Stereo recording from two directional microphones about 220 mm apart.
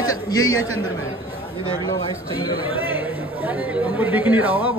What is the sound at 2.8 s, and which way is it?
Chatter, 10° right (ahead or behind).